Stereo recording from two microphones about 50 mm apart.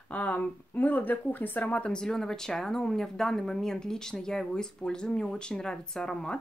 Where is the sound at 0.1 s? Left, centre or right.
Left.